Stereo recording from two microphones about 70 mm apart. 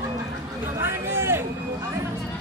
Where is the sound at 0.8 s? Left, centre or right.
Right.